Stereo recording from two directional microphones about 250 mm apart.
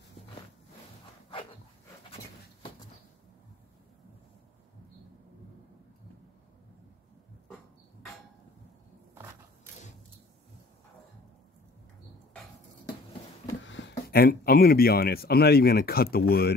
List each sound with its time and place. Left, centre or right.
13.6 s speech: left